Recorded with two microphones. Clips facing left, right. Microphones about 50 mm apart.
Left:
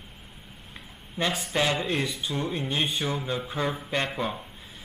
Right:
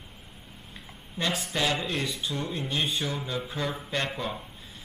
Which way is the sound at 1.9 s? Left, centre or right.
Centre.